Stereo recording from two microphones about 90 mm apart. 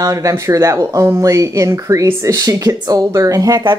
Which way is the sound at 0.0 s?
40° right (ahead or behind).